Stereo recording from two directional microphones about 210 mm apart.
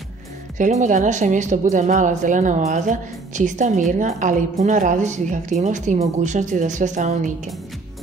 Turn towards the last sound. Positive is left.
turn(degrees=-35)  # may be behind; listen again after turning